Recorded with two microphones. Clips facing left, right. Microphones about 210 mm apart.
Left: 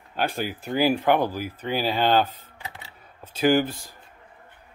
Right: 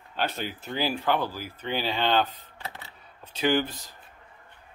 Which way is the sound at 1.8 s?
40° left (ahead or behind).